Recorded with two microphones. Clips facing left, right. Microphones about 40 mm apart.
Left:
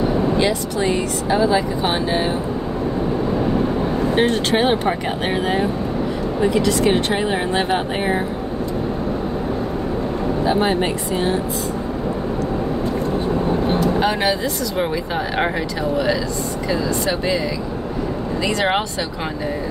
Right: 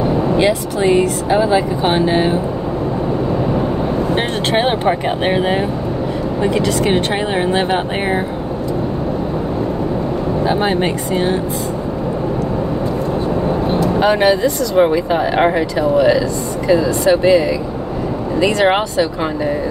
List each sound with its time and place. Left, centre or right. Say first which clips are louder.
0.4 s speech: right 4 dB; centre
4.1 s speech: right 1 dB; right
7.3 s speech: right 4 dB; right
10.4 s speech: right 1 dB; centre
13.9 s speech: right 6 dB; centre
18.4 s speech: right 6 dB; centre